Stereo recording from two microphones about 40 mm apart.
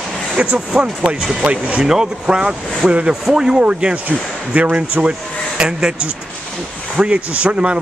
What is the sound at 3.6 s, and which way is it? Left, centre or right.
Speech, right.